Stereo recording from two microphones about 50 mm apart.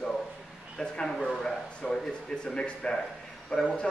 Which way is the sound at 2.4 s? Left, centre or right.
Centre.